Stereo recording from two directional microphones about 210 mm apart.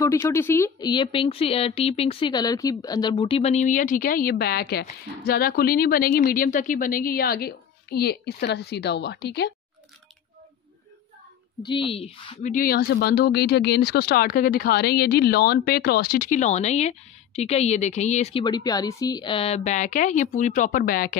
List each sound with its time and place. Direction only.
0.0 s speech: 15° left (ahead or behind); by 9.5 s 50° left (ahead or behind)
11.6 s speech: 25° left (ahead or behind); by 21.2 s 45° left (ahead or behind)